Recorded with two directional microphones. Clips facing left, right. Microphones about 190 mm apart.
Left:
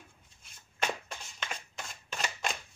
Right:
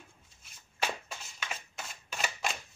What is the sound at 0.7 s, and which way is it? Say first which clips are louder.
Music: left 1 dB; 5° right (ahead or behind).